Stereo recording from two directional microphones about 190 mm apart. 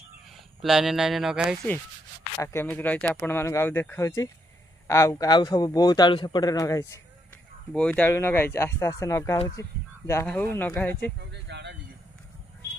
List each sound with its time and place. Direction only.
0.6 s speech: centre (ahead or behind)
2.3 s a man's voice: 15° left (ahead or behind)
7.7 s speech: 5° left (ahead or behind)
11.1 s a sound: 65° right (ahead or behind)